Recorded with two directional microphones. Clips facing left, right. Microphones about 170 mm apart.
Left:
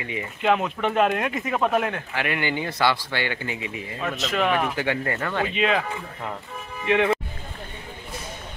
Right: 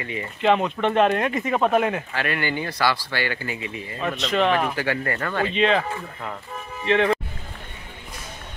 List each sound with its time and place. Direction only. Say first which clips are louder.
0.1 s speech: right 2 dB; 5° left (ahead or behind)
2.1 s speech: even; 15° left (ahead or behind)
4.0 s speech: right 3 dB; centre (ahead or behind)
4.7 s speech: even; 20° left (ahead or behind)